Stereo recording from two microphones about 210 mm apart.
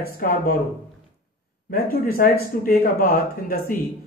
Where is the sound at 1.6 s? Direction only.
45° left (ahead or behind).